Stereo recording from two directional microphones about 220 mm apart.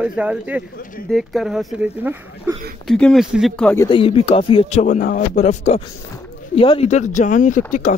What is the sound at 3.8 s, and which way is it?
Speech, 25° left (ahead or behind).